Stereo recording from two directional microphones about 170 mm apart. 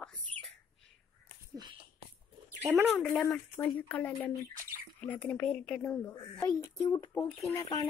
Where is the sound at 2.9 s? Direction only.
Centre (ahead or behind).